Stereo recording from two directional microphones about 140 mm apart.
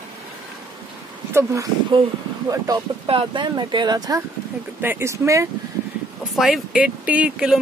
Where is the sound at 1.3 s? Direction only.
20° right (ahead or behind).